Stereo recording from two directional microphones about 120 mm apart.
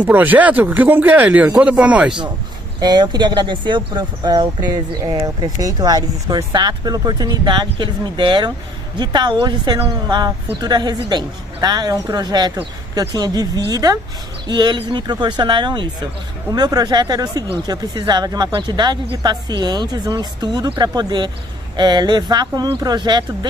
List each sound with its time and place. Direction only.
0.0 s speech: 15° right (ahead or behind)
2.8 s speech: 35° right (ahead or behind)